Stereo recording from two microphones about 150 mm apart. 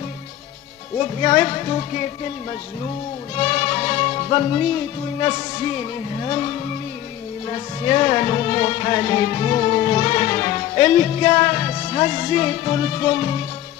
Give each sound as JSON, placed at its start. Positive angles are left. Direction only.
{"t": 0.9, "sound": "music", "side_deg": 35}
{"t": 3.3, "sound": "music", "side_deg": 35}